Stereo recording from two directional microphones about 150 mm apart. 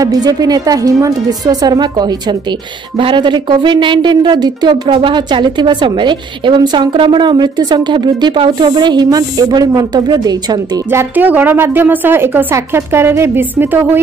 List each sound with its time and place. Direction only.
0.0 s speech: 25° right (ahead or behind)
10.9 s speech: 15° right (ahead or behind)